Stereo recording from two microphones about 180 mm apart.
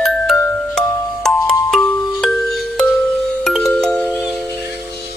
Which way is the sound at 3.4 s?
Centre (ahead or behind).